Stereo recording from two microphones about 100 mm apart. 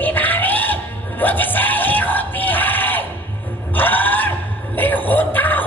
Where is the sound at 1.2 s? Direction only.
20° left (ahead or behind).